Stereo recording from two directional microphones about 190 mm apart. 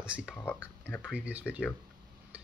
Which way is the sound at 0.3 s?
10° left (ahead or behind).